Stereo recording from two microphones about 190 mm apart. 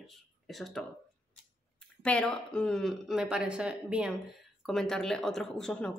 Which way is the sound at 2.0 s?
5° left (ahead or behind).